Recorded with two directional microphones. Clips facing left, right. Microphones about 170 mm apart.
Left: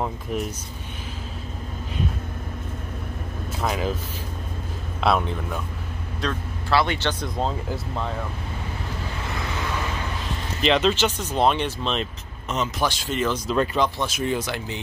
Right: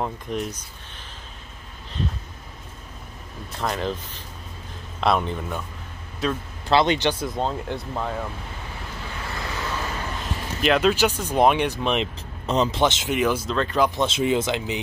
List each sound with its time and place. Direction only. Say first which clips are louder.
0.0 s speech: even; 5° left (ahead or behind)
3.5 s speech: left 1 dB; 5° left (ahead or behind)
5.0 s speech: even; centre (ahead or behind)
6.7 s speech: right 3 dB; 20° right (ahead or behind)
7.3 s speech: even; centre (ahead or behind)
10.6 s speech: right 1 dB; 5° right (ahead or behind)
12.4 s speech: right 5 dB; 35° right (ahead or behind)
12.8 s speech: right 3 dB; 20° right (ahead or behind)